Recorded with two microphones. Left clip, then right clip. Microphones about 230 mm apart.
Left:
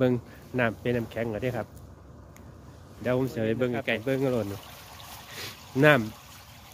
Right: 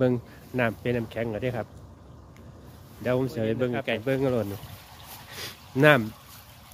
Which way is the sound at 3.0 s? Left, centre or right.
Centre.